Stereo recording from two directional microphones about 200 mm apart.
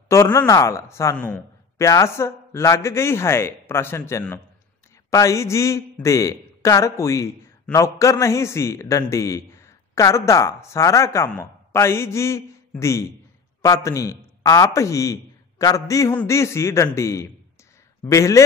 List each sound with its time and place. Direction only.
0.1 s a man's voice: 15° left (ahead or behind)